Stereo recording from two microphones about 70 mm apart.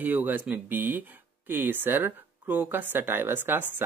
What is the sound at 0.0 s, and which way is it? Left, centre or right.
Speech, right.